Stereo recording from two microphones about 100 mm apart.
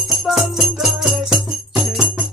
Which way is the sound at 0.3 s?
5° right (ahead or behind).